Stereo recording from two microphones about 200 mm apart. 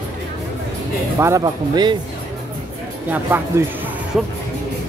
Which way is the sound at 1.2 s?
15° right (ahead or behind).